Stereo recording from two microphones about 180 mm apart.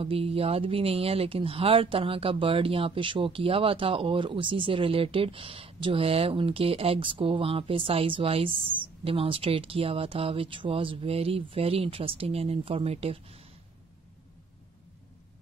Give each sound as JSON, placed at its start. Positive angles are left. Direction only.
{"t": 0.0, "sound": "speech", "side_deg": -30}